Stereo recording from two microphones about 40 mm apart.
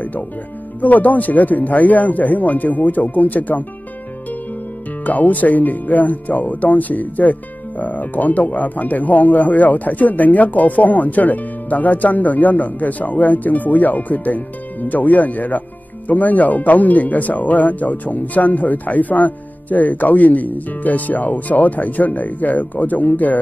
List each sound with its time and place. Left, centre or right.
0.7 s speech: left
5.0 s speech: left